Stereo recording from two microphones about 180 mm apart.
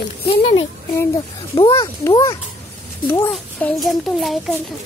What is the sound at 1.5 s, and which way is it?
Speech, 25° left (ahead or behind).